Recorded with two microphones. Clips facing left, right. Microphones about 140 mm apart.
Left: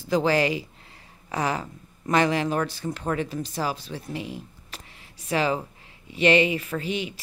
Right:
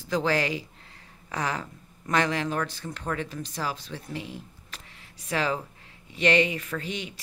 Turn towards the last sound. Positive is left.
turn(degrees=5)  # may be behind; listen again after turning